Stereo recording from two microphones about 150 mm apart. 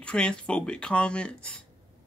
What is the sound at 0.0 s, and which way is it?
Speech, 5° left (ahead or behind).